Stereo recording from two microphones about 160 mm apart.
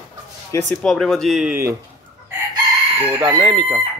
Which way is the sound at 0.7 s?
5° left (ahead or behind).